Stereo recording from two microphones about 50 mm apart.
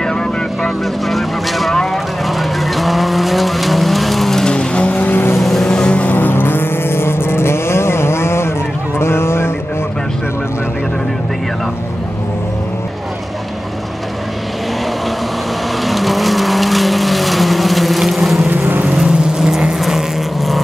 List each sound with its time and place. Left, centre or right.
0.0 s vehicle: centre
1.0 s vehicle: centre
4.8 s vehicle: left
5.4 s vehicle: centre
6.0 s vehicle: left
15.8 s vehicle: centre
18.5 s vehicle: right
18.9 s vehicle: centre